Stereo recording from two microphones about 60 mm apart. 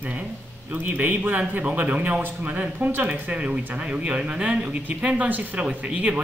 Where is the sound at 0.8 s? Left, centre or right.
Right.